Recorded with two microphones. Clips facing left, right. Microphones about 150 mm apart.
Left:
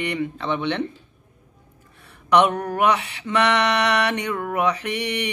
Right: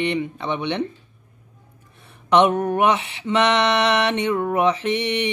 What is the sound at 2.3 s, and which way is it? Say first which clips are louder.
Mantra: right 2 dB; 20° right (ahead or behind).